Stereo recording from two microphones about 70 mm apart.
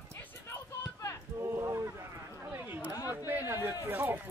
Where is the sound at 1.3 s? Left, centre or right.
Right.